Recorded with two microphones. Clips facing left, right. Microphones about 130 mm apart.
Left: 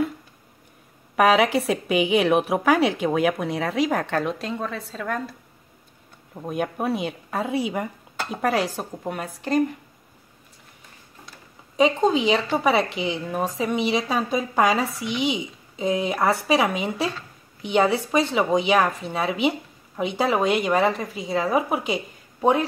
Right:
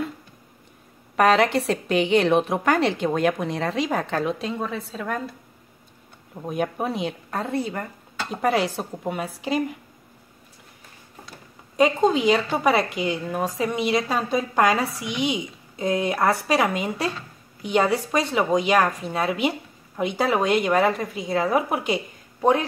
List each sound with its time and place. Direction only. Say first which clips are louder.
1.1 s a woman's voice: even; 5° left (ahead or behind)
6.3 s a woman's voice: right 1 dB; centre (ahead or behind)
8.3 s a woman's voice: right 1 dB; centre (ahead or behind)
11.7 s a woman's voice: even; centre (ahead or behind)